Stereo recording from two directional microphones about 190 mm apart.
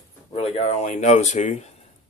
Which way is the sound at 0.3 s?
35° left (ahead or behind).